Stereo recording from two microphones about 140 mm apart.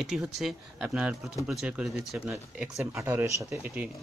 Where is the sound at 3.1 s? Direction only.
20° right (ahead or behind).